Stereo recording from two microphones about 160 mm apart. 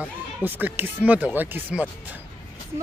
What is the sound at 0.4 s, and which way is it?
Speech, 10° right (ahead or behind).